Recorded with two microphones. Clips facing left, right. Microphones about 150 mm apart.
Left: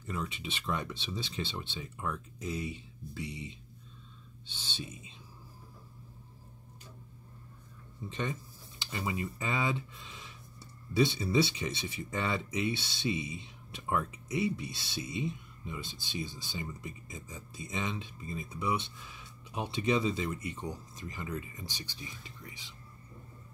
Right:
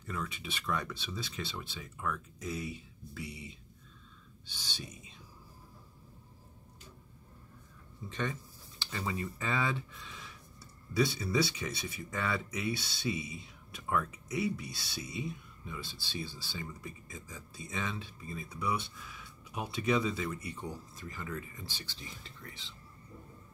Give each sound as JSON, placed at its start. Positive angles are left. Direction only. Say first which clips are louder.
{"t": 0.0, "sound": "speech", "louder": "left 2 dB", "side_deg": 25}
{"t": 8.1, "sound": "speech", "louder": "even", "side_deg": 20}